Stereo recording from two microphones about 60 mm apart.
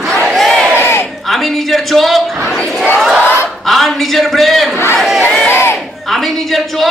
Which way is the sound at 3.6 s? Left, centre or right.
Centre.